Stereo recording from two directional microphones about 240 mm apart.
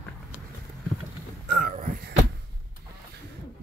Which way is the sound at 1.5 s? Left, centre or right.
Right.